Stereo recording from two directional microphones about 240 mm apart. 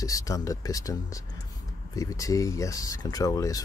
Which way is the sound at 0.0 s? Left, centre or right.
Centre.